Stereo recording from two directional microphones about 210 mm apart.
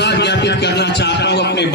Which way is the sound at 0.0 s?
55° left (ahead or behind).